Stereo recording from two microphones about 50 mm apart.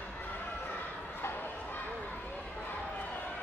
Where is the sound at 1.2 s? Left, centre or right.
Left.